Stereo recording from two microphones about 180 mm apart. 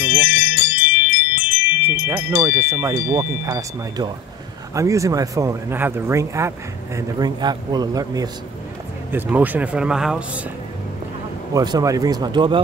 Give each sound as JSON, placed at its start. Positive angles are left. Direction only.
{"t": 0.2, "sound": "music", "side_deg": 90}
{"t": 1.9, "sound": "a man's voice", "side_deg": -15}
{"t": 9.1, "sound": "speech", "side_deg": -10}
{"t": 11.5, "sound": "a man's voice", "side_deg": -20}